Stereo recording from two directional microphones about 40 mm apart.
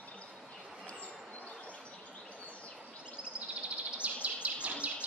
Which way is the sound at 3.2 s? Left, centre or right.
Right.